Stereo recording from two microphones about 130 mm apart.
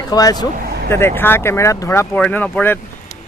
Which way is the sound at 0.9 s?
20° left (ahead or behind).